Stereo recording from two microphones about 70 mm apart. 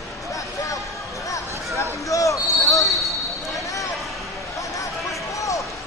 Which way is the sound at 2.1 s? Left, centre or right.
Left.